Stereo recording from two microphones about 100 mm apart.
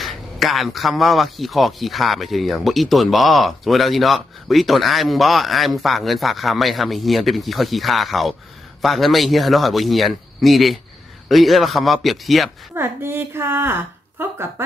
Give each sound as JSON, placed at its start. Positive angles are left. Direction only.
{"t": 0.0, "sound": "speech", "side_deg": 0}
{"t": 12.7, "sound": "a woman's voice", "side_deg": -25}